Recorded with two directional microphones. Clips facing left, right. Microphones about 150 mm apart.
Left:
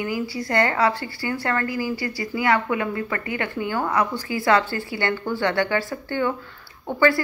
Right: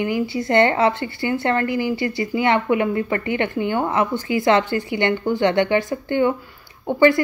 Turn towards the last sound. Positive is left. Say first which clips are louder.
# right 4 dB
turn(degrees=-20)  # may be behind; listen again after turning